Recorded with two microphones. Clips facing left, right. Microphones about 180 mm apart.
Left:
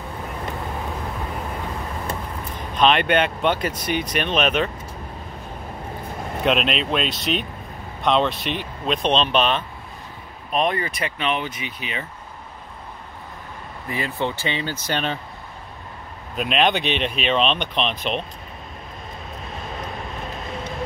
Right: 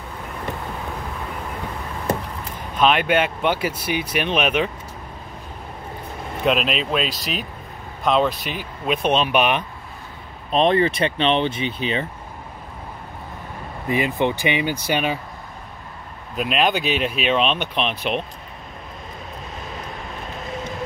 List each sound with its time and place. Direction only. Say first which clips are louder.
2.8 s speech: even; 5° right (ahead or behind)
6.4 s speech: right 1 dB; centre (ahead or behind)
10.5 s speech: right 5 dB; 25° right (ahead or behind)
13.8 s speech: right 5 dB; 20° right (ahead or behind)
16.3 s speech: even; centre (ahead or behind)